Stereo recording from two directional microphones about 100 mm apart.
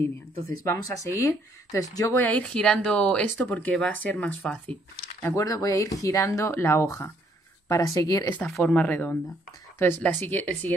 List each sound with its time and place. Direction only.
0.7 s speech: 30° left (ahead or behind)
2.1 s speech: 15° left (ahead or behind)
5.2 s speech: 30° left (ahead or behind)
8.6 s speech: 15° left (ahead or behind)